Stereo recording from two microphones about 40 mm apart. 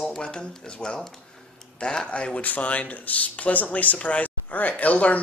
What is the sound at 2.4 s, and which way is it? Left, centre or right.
Speech, left.